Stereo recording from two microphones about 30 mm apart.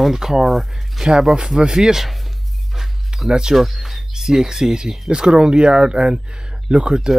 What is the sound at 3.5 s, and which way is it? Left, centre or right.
Speech, centre.